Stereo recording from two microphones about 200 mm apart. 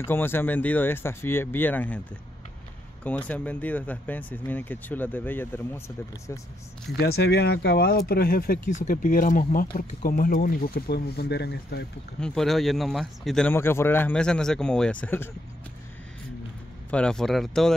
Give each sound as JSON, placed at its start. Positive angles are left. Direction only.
{"t": 0.0, "sound": "speech", "side_deg": 10}
{"t": 3.0, "sound": "speech", "side_deg": 5}
{"t": 6.9, "sound": "speech", "side_deg": 55}
{"t": 12.2, "sound": "speech", "side_deg": 0}
{"t": 16.9, "sound": "speech", "side_deg": 5}